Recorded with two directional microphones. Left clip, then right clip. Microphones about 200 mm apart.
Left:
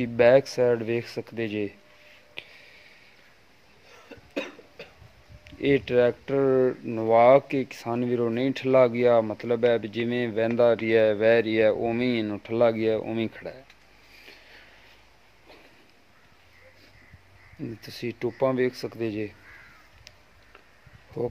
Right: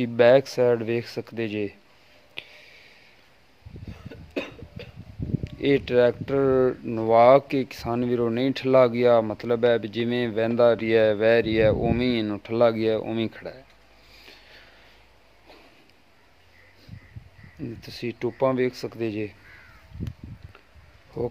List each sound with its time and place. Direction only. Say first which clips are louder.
0.0 s speech: right 1 dB; 10° right (ahead or behind)
2.3 s a sound: right 2 dB; 5° right (ahead or behind)
4.3 s cough: right 1 dB; 50° right (ahead or behind)
5.4 s speech: right 1 dB; 5° right (ahead or behind)
14.2 s a sound: right 1 dB; centre (ahead or behind)
17.6 s speech: right 1 dB; centre (ahead or behind)
21.2 s speech: right 1 dB; centre (ahead or behind)